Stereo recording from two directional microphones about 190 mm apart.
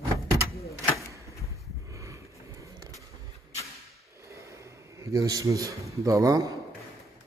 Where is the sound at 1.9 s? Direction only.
15° right (ahead or behind).